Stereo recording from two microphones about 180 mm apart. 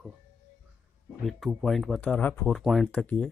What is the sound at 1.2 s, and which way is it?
Speech, centre (ahead or behind).